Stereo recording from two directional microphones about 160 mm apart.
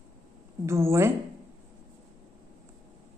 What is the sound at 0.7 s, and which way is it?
Speech, 15° right (ahead or behind).